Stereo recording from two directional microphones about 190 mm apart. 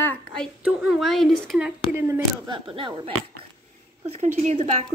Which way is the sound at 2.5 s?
25° right (ahead or behind).